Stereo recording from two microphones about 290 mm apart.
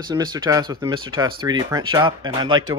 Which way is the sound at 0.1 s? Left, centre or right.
Centre.